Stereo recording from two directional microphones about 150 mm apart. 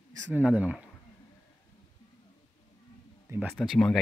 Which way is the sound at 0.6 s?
10° right (ahead or behind).